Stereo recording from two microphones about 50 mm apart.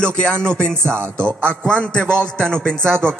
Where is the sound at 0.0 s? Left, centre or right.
Centre.